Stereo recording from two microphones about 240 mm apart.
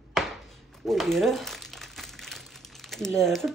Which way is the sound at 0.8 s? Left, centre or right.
Centre.